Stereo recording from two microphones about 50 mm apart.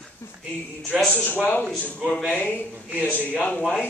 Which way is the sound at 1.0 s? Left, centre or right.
Left.